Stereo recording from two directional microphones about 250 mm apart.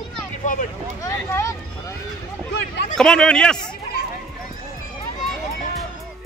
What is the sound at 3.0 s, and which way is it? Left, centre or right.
Speech, centre.